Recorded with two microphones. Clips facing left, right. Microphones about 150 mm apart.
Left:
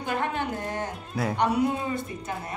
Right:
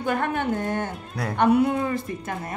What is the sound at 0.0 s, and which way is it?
Speech, 55° right (ahead or behind).